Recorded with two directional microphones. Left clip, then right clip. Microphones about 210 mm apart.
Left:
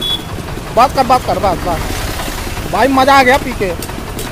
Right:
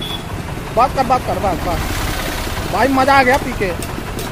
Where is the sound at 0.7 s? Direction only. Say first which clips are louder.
Left 4 dB; 25° left (ahead or behind).